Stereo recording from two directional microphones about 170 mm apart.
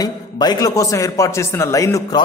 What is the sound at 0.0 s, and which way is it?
A man's voice, 25° left (ahead or behind).